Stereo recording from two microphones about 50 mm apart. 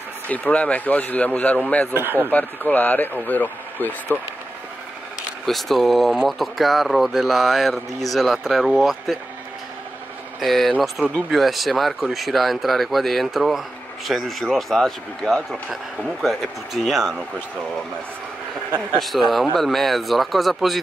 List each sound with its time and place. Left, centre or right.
0.3 s a man's voice: left
2.0 s speech: right
2.3 s speech: left
5.4 s speech: centre
10.4 s speech: centre
11.3 s speech: centre
18.9 s speech: centre